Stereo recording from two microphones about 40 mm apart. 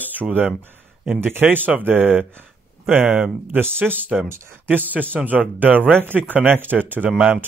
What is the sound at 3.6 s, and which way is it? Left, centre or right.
Speech, right.